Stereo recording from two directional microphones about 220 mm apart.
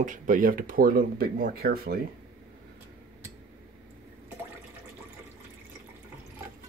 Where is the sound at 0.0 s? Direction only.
35° right (ahead or behind).